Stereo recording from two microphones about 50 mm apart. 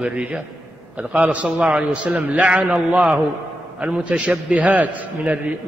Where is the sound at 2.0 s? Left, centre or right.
Right.